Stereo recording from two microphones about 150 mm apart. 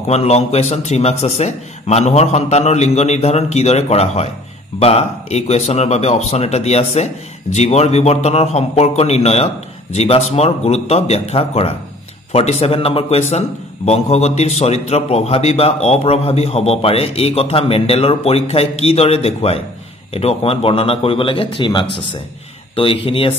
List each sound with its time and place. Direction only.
0.1 s a man's voice: 45° left (ahead or behind)